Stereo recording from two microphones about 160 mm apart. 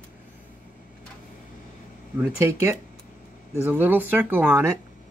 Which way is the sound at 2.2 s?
15° right (ahead or behind).